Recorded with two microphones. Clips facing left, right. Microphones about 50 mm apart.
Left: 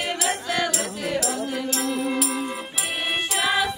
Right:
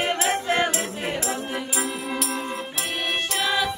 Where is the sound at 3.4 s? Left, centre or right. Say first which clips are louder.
Left 2 dB; centre.